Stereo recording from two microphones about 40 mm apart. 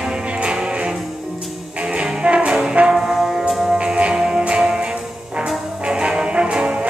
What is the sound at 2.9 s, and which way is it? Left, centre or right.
Music, centre.